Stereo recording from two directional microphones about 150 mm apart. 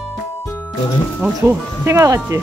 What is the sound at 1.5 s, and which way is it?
Speech, 15° right (ahead or behind).